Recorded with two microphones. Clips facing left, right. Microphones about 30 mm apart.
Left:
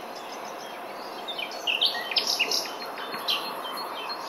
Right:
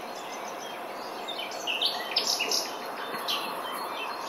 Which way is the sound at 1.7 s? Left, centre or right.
Left.